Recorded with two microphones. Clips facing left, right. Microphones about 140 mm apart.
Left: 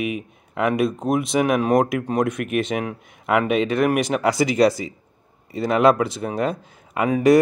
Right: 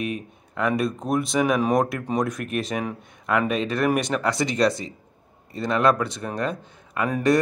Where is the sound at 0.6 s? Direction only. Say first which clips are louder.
Left 3 dB; 20° left (ahead or behind).